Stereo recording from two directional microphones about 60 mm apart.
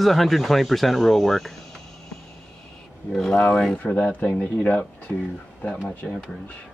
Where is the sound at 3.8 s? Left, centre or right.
Left.